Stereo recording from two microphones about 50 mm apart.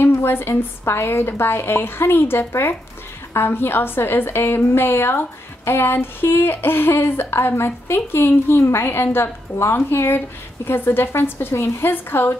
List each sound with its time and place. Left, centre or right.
0.0 s speech: left
11.5 s a woman's voice: left
11.9 s speech: left